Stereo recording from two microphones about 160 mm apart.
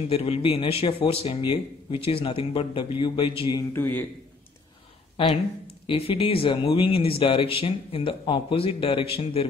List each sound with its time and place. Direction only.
0.1 s speech: 40° left (ahead or behind)
3.7 s a man's voice: 15° left (ahead or behind)
5.1 s speech: 35° left (ahead or behind)